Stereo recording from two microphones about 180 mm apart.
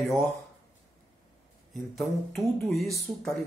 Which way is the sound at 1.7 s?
Centre (ahead or behind).